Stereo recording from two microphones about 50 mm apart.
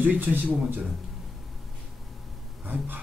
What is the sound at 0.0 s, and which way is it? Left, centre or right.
Speech, right.